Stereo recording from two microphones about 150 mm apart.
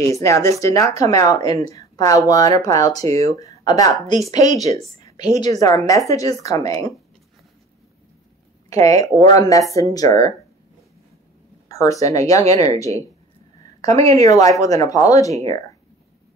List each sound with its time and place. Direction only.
0.1 s speech: 20° left (ahead or behind)
8.6 s speech: 20° left (ahead or behind)
11.7 s speech: 20° left (ahead or behind)
14.0 s speech: 20° left (ahead or behind)